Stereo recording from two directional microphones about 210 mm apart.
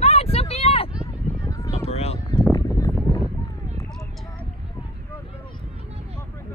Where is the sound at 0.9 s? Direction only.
5° right (ahead or behind).